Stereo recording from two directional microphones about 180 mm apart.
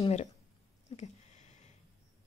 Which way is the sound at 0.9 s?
40° left (ahead or behind).